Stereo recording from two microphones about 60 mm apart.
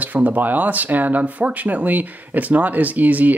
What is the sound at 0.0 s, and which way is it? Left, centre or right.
Speech, right.